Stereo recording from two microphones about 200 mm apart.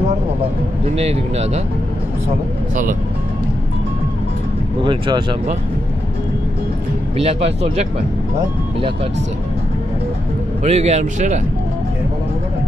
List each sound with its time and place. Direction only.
0.9 s a man's voice: 30° right (ahead or behind)
2.7 s speech: 45° right (ahead or behind)
4.8 s speech: 25° right (ahead or behind)
7.2 s a man's voice: 30° right (ahead or behind)
10.6 s a man's voice: 35° right (ahead or behind)